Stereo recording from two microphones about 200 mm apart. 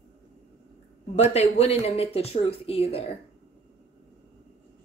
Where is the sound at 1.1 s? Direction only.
30° left (ahead or behind).